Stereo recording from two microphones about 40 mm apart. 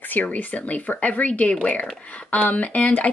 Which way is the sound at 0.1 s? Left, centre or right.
Left.